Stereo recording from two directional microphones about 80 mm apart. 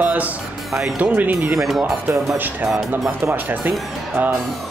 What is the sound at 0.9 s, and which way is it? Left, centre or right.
Speech, right.